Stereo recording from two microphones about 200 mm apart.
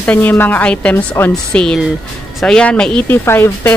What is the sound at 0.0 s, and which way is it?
Speech, 10° left (ahead or behind).